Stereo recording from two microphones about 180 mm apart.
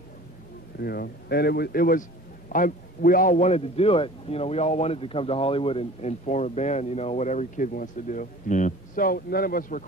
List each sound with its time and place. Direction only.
0.7 s a man's voice: 60° left (ahead or behind)